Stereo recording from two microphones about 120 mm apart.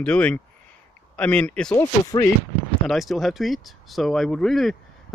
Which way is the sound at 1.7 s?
30° left (ahead or behind).